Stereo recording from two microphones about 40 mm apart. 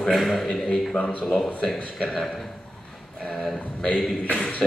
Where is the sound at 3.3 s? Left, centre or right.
Centre.